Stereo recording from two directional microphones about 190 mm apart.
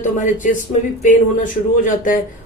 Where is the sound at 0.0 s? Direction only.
40° left (ahead or behind).